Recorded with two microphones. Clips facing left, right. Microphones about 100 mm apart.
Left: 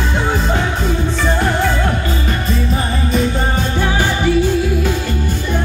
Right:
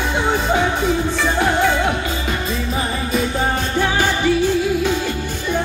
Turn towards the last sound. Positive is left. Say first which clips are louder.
# left 2 dB
turn(degrees=15)  # may be behind; listen again after turning